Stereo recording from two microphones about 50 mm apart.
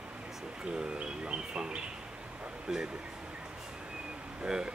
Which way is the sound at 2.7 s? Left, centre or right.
Centre.